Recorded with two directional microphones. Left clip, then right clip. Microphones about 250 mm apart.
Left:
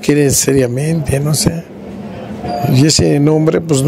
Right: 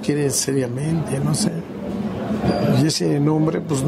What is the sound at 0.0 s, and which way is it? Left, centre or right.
Speech, left.